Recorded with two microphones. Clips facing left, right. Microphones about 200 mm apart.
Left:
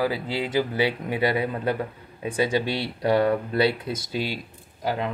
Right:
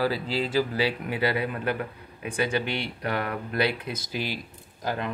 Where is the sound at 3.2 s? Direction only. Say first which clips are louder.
Left 9 dB; 30° left (ahead or behind).